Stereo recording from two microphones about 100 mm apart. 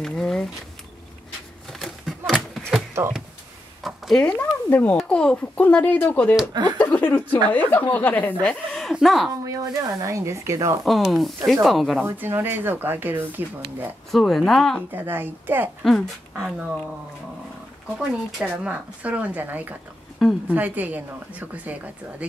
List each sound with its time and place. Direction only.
0.0 s speech: 5° left (ahead or behind)
1.7 s a sound: centre (ahead or behind)
3.8 s a sound: centre (ahead or behind)
4.2 s speech: 15° left (ahead or behind)
6.5 s speech: 45° right (ahead or behind)
6.8 s speech: 15° left (ahead or behind); by 9.3 s centre (ahead or behind)
9.4 s speech: 35° right (ahead or behind)
10.9 s speech: centre (ahead or behind)
12.0 s speech: 20° right (ahead or behind)
14.1 s speech: centre (ahead or behind)
14.9 s speech: 20° right (ahead or behind)
15.8 s speech: centre (ahead or behind)
17.9 s speech: 10° right (ahead or behind)